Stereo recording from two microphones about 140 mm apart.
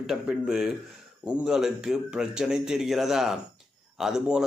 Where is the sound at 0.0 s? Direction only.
Centre (ahead or behind).